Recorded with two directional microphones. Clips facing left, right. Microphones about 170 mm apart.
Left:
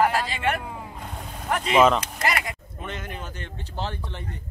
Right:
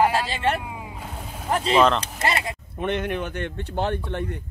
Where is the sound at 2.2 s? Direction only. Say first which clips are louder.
Right 2 dB; 30° right (ahead or behind).